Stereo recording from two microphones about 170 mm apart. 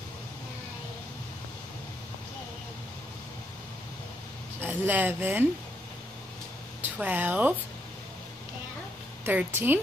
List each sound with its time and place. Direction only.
4.6 s a woman's voice: 10° right (ahead or behind)
6.8 s speech: 10° right (ahead or behind)
9.2 s a woman's voice: 10° right (ahead or behind)